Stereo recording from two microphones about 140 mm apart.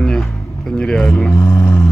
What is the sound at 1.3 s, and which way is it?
Music, 25° left (ahead or behind).